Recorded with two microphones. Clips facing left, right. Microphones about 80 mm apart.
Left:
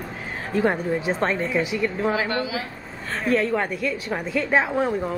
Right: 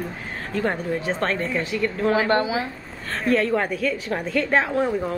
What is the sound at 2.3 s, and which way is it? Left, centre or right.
Speech, right.